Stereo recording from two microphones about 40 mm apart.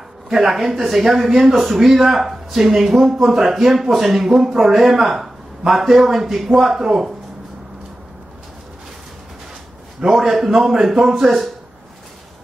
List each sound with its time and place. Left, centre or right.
0.3 s speech: centre
10.0 s speech: centre